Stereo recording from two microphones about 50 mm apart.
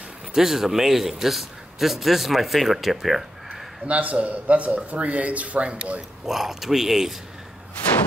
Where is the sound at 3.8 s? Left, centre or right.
Right.